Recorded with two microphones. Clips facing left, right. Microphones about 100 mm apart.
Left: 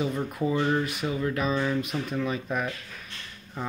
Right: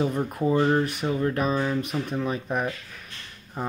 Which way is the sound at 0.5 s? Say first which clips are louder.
Right 5 dB; 30° right (ahead or behind).